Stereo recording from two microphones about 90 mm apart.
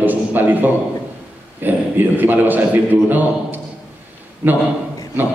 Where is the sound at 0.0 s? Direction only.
20° right (ahead or behind).